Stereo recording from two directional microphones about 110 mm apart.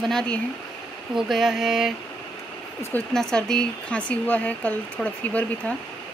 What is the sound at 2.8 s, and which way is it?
Speech, 20° left (ahead or behind).